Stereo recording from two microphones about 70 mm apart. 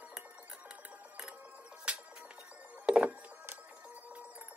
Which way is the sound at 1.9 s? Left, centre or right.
Centre.